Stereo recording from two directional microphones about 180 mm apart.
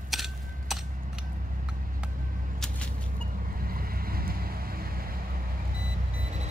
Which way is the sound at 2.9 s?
50° right (ahead or behind).